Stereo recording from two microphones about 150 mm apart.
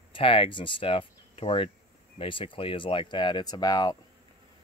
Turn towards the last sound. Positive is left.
turn(degrees=25)  # may be behind; listen again after turning